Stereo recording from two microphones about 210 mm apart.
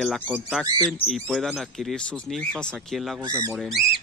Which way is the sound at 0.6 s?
20° right (ahead or behind).